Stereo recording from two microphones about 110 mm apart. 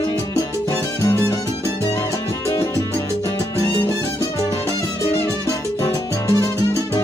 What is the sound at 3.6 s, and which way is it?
Music, 30° left (ahead or behind).